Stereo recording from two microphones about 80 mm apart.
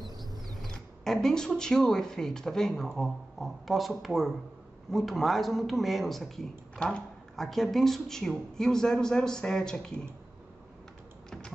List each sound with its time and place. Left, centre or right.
0.6 s speech: centre